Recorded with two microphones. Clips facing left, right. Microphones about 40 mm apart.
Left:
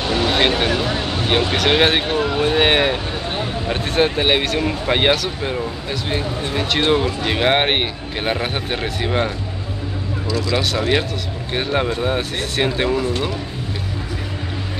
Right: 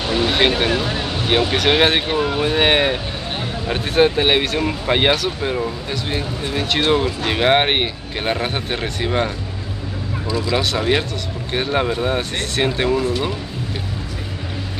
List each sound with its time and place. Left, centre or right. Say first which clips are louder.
0.3 s speech: even; centre
10.2 s speech: even; centre
10.6 s speech: even; centre